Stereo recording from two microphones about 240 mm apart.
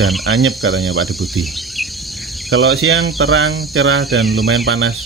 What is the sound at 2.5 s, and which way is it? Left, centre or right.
Speech, right.